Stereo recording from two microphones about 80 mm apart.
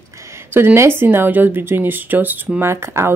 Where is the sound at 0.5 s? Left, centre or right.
Right.